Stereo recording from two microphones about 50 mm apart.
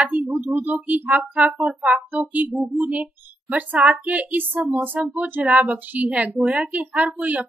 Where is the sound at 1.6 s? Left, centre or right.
Right.